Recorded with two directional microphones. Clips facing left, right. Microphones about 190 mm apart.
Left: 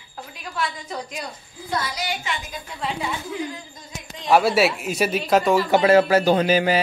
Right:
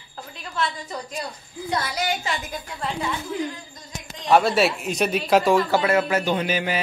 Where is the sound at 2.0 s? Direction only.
40° right (ahead or behind).